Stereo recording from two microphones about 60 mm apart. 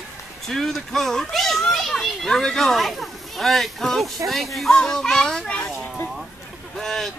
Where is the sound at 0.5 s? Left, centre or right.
Centre.